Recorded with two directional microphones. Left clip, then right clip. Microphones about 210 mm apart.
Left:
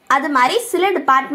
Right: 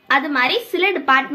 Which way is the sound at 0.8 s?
10° left (ahead or behind).